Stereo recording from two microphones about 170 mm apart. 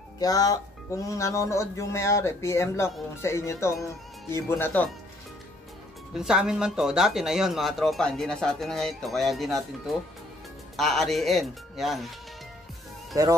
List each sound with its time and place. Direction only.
0.2 s speech: 20° left (ahead or behind)
6.1 s speech: 5° right (ahead or behind)
13.1 s speech: 20° right (ahead or behind)